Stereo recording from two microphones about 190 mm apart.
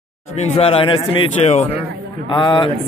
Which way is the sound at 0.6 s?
30° left (ahead or behind).